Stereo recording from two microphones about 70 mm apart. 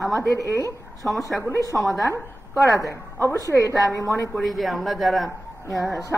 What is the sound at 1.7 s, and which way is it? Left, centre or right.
Speech, centre.